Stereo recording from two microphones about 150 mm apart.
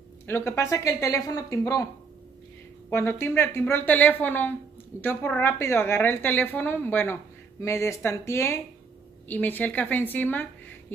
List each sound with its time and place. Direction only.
0.3 s speech: 20° left (ahead or behind)
2.9 s a woman's voice: 15° left (ahead or behind)